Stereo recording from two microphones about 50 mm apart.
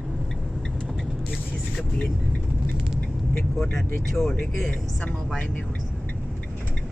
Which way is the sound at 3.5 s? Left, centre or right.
Centre.